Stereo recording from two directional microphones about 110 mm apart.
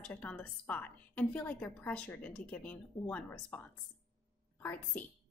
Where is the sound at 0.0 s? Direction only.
15° left (ahead or behind).